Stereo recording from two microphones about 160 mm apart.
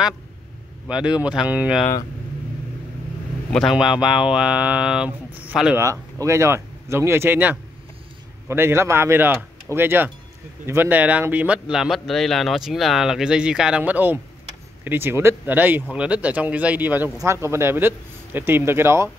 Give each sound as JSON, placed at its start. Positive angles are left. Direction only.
{"t": 0.8, "sound": "a man's voice", "side_deg": -5}
{"t": 3.5, "sound": "a man's voice", "side_deg": 0}
{"t": 6.2, "sound": "a man's voice", "side_deg": -15}